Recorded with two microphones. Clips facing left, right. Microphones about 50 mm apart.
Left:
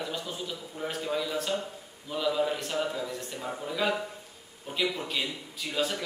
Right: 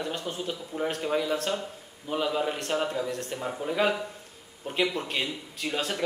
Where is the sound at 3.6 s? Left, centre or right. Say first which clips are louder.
Right 3 dB; right.